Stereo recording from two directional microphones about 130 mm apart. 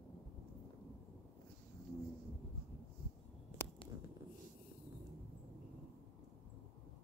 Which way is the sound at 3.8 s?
40° left (ahead or behind).